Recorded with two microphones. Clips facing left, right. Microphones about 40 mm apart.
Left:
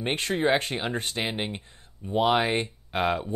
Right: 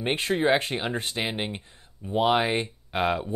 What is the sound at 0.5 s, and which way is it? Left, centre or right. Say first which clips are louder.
Speech: even; right.